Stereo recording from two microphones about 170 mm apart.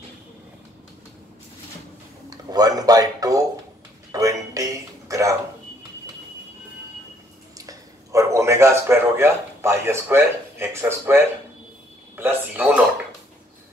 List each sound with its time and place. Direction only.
2.2 s speech: 20° right (ahead or behind)
4.1 s music: 20° right (ahead or behind)
7.5 s a man's voice: 20° right (ahead or behind)